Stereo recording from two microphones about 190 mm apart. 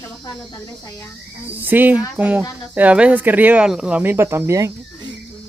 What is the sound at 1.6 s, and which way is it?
Speech, 10° right (ahead or behind).